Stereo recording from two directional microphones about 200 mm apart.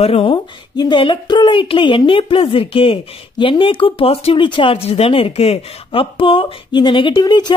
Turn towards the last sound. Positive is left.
turn(degrees=20)  # may be behind; listen again after turning